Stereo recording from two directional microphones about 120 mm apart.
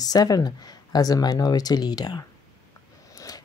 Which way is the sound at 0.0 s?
30° left (ahead or behind).